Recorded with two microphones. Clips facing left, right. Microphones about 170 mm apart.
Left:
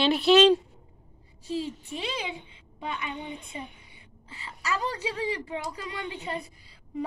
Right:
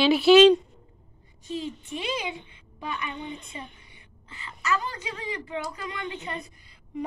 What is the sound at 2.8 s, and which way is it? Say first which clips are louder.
Speech: right 1 dB; 20° left (ahead or behind).